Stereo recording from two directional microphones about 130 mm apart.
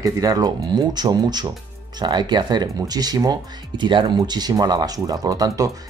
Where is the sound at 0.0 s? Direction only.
30° right (ahead or behind).